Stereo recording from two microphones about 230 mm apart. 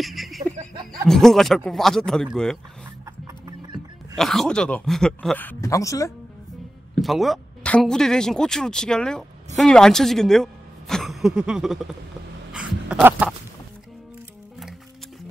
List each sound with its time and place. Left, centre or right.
0.0 s a sound: centre
1.0 s speech: centre
3.4 s music: centre
4.2 s speech: centre
7.0 s speech: centre
12.5 s a sound: centre